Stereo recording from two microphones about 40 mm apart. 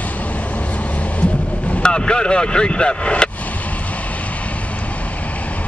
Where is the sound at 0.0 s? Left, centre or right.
Left.